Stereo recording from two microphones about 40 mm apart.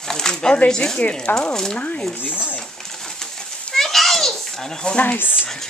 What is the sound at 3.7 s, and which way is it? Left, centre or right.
Children playing, centre.